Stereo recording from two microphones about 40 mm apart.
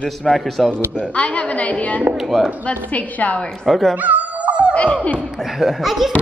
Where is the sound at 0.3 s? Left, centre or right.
Centre.